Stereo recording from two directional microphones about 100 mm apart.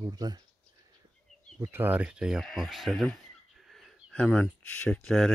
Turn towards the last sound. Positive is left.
turn(degrees=15)  # may be behind; listen again after turning